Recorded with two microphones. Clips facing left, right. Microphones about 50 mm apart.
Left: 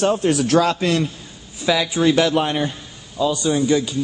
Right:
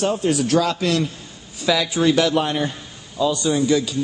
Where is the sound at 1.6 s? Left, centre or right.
Centre.